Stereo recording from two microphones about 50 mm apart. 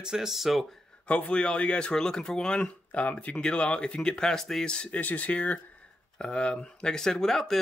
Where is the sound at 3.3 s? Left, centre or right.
Centre.